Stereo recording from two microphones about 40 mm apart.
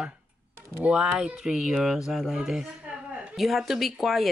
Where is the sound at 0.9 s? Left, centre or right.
Centre.